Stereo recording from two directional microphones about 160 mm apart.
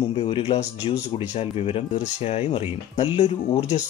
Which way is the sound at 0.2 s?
35° left (ahead or behind).